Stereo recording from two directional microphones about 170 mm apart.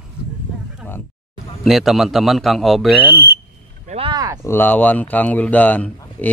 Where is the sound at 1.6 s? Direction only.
Centre (ahead or behind).